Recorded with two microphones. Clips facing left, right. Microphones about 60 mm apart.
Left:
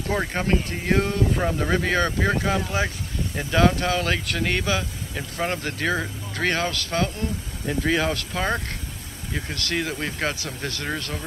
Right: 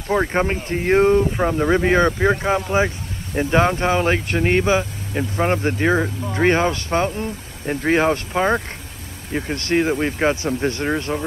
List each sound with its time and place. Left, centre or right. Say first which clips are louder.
0.3 s speech: right 4 dB; right
7.6 s speech: right 5 dB; right